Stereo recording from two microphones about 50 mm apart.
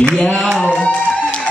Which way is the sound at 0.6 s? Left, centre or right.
Left.